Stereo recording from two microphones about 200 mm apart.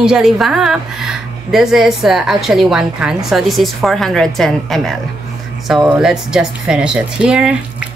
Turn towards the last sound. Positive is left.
turn(degrees=-5)  # may be behind; listen again after turning